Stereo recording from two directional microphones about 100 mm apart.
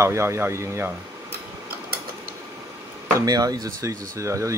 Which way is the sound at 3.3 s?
40° right (ahead or behind).